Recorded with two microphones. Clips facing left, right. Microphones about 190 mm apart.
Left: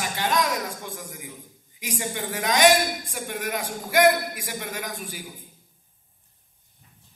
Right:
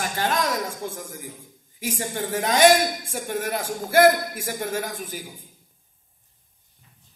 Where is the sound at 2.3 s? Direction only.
40° right (ahead or behind).